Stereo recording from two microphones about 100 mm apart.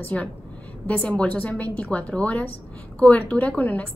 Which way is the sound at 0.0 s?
15° left (ahead or behind).